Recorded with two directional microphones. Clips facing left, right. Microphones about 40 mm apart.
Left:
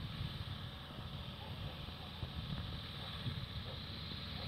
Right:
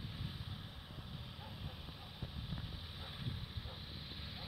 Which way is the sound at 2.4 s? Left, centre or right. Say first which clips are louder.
Left 2 dB; left.